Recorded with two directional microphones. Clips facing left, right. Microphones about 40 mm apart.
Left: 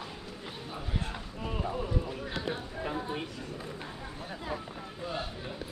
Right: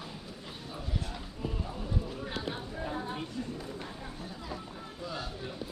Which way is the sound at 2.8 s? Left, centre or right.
Left.